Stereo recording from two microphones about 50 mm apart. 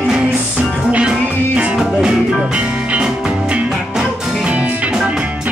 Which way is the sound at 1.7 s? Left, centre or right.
Centre.